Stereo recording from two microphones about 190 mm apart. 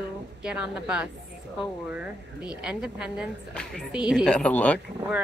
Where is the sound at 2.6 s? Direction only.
5° right (ahead or behind).